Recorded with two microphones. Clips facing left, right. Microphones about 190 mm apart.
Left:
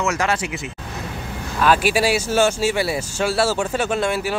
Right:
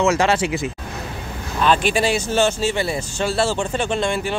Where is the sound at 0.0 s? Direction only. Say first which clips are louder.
Right 4 dB; 30° right (ahead or behind).